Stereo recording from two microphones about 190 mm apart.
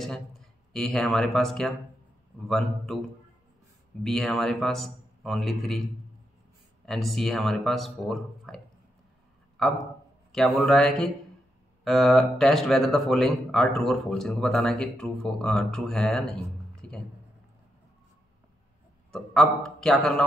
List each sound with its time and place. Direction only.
0.0 s speech: centre (ahead or behind)
4.0 s speech: centre (ahead or behind)
6.9 s speech: centre (ahead or behind)
9.6 s a man's voice: centre (ahead or behind)
16.7 s music: 5° left (ahead or behind)
19.1 s speech: centre (ahead or behind)